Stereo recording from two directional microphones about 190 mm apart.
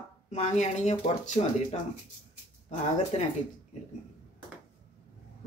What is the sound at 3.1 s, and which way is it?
Speech, 35° left (ahead or behind).